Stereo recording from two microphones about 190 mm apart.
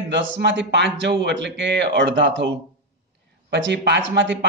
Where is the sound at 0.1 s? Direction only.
70° right (ahead or behind).